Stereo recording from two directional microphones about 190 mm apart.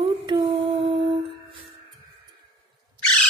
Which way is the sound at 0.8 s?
25° right (ahead or behind).